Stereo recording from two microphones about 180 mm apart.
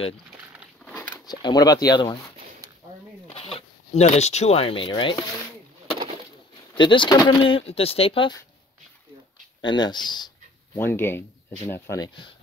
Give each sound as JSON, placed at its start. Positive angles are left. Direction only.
{"t": 0.8, "sound": "a sound", "side_deg": 10}
{"t": 1.3, "sound": "speech", "side_deg": 20}
{"t": 3.3, "sound": "speech", "side_deg": 30}
{"t": 6.7, "sound": "speech", "side_deg": 25}
{"t": 9.6, "sound": "speech", "side_deg": 25}
{"t": 10.7, "sound": "speech", "side_deg": 10}